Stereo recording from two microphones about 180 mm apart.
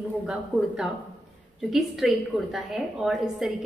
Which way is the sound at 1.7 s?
Centre (ahead or behind).